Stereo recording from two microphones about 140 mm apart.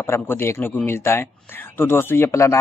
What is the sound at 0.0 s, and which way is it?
A man's voice, 15° left (ahead or behind).